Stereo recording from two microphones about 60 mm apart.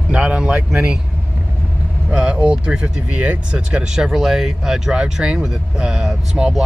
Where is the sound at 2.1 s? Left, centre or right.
Centre.